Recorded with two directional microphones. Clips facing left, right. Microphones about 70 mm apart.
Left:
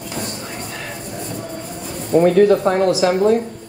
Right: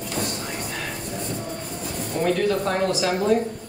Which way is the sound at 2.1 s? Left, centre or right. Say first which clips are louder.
Left 12 dB; left.